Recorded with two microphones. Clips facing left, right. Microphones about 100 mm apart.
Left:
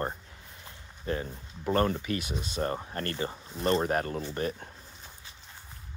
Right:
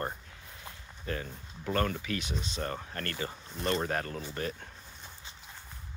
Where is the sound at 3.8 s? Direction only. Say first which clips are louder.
Left 4 dB; 20° left (ahead or behind).